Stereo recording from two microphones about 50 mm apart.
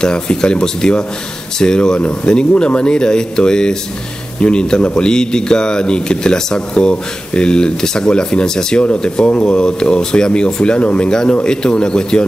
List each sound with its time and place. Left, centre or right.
0.0 s speech: centre